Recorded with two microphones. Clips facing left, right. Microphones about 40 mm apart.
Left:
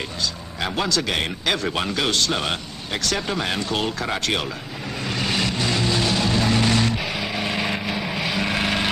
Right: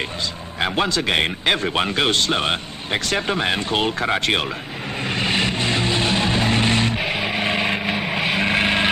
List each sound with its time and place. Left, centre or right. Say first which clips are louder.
0.6 s speech: right 3 dB; right
5.0 s vehicle: right 3 dB; right